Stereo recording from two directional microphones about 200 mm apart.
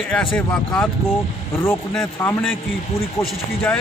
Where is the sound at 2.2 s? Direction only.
15° left (ahead or behind).